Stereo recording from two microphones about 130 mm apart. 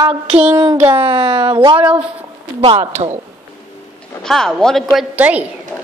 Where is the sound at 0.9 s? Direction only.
45° right (ahead or behind).